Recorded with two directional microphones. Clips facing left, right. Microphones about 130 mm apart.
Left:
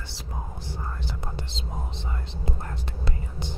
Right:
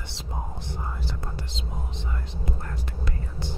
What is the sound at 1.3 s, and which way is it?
Whispering, 30° left (ahead or behind).